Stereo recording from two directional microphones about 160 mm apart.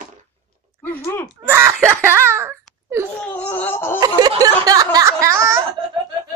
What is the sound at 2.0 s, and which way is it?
Speech, 15° right (ahead or behind).